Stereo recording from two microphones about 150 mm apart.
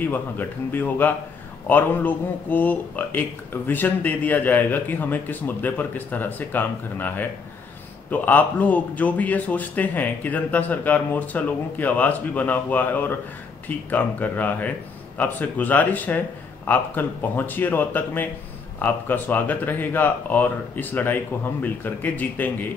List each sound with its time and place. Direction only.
0.0 s speech: 15° left (ahead or behind)